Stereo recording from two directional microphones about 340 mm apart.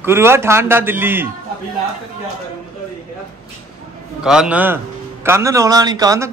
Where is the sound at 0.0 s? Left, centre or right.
Centre.